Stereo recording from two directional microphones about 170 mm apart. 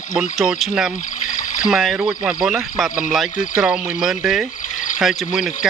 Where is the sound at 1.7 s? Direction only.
Centre (ahead or behind).